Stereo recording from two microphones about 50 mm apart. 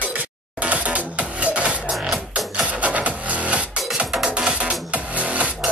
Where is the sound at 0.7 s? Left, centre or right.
Right.